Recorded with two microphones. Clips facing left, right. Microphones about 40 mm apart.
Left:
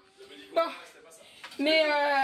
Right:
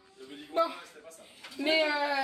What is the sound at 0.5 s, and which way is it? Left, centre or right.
Speech, left.